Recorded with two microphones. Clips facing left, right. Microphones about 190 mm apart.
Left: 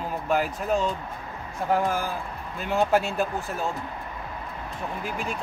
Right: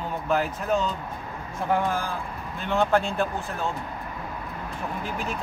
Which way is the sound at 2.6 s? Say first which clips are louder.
Even; 5° left (ahead or behind).